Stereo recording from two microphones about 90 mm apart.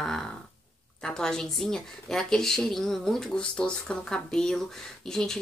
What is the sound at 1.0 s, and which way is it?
A woman's voice, 5° left (ahead or behind).